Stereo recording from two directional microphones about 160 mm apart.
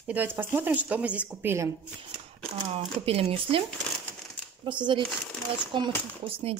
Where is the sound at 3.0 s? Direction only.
40° right (ahead or behind).